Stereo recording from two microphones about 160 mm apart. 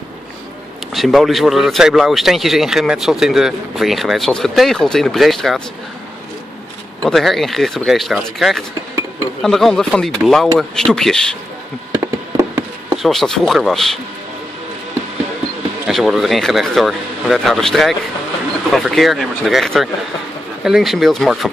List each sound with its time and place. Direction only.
0.9 s speech: centre (ahead or behind)
7.1 s speech: centre (ahead or behind)
11.9 s a sound: 15° right (ahead or behind)
13.0 s speech: centre (ahead or behind)
15.9 s speech: centre (ahead or behind)